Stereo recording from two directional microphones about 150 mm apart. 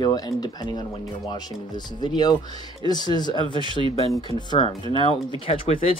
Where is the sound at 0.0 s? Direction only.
25° left (ahead or behind).